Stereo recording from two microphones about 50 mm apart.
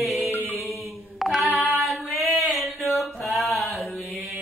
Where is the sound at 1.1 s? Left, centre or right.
Centre.